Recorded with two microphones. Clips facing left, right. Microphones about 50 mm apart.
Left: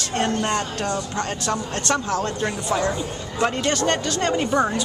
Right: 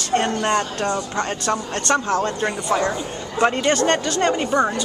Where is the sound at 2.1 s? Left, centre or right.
Centre.